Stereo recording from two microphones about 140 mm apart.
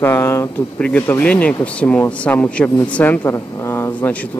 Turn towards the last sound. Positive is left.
turn(degrees=15)  # may be behind; listen again after turning